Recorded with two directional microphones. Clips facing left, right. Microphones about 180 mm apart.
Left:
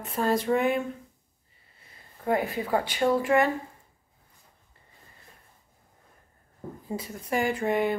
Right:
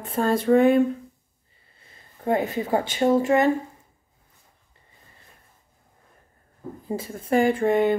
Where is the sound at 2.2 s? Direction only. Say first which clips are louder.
Right 3 dB; 25° right (ahead or behind).